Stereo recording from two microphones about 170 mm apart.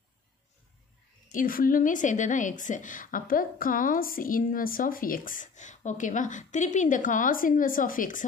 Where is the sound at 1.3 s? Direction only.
55° left (ahead or behind).